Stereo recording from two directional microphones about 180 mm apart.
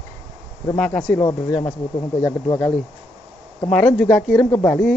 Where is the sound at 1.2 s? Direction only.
25° left (ahead or behind).